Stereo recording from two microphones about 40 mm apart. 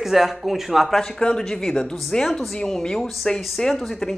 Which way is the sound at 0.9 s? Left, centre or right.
Centre.